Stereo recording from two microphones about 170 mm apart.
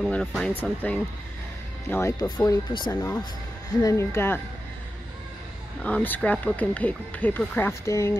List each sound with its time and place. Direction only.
0.0 s speech: 5° left (ahead or behind)
5.9 s speech: 10° left (ahead or behind)